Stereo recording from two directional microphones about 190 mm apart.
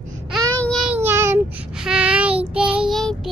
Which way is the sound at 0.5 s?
5° left (ahead or behind).